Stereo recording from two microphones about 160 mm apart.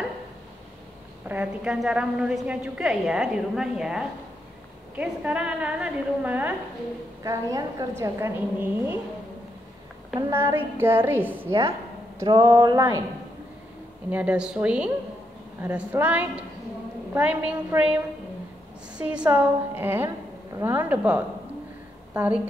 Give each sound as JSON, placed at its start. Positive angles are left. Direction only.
{"t": 1.3, "sound": "a woman's voice", "side_deg": -10}
{"t": 7.2, "sound": "a woman's voice", "side_deg": -20}
{"t": 10.3, "sound": "a woman's voice", "side_deg": -15}
{"t": 14.1, "sound": "a woman's voice", "side_deg": -5}
{"t": 18.9, "sound": "a woman's voice", "side_deg": -5}